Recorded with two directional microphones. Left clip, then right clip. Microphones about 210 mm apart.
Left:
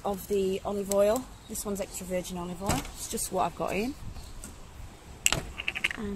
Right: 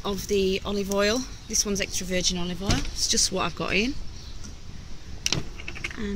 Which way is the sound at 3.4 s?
5° left (ahead or behind).